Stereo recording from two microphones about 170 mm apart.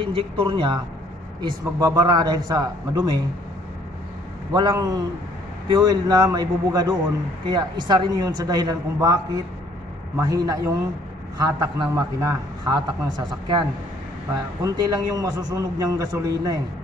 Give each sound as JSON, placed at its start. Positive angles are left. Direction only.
{"t": 0.0, "sound": "a man's voice", "side_deg": -30}
{"t": 4.6, "sound": "a man's voice", "side_deg": -25}